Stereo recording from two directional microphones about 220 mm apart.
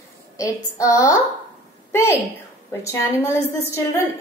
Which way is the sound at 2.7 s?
10° left (ahead or behind).